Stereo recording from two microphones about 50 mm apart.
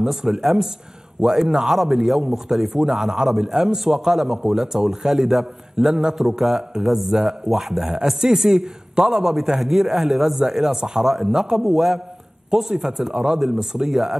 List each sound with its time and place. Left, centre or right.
0.0 s a man's voice: centre